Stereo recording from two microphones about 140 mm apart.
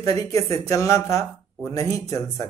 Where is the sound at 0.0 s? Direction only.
25° left (ahead or behind).